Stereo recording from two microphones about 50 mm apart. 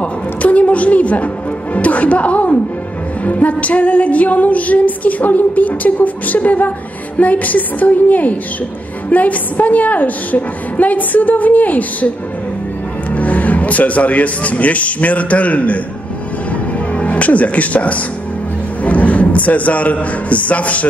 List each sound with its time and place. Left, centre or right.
0.0 s a woman's voice: left
3.3 s music: left
13.1 s speech: left
16.9 s a man's voice: left